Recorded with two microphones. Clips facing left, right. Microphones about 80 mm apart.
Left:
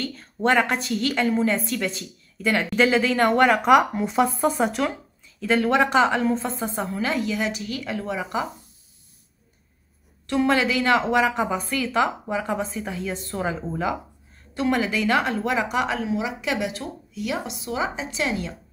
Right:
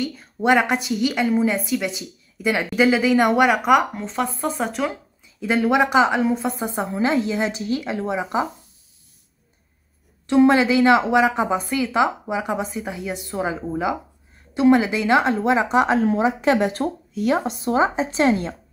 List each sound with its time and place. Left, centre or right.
0.0 s a woman's voice: centre
5.4 s a woman's voice: centre
10.2 s a woman's voice: right